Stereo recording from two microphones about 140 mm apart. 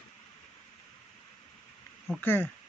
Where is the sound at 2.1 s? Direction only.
15° left (ahead or behind).